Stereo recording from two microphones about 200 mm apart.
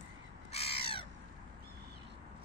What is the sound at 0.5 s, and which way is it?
Crow, 30° left (ahead or behind).